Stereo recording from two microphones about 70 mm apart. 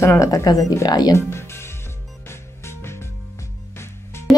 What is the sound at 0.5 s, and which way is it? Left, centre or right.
Speech, left.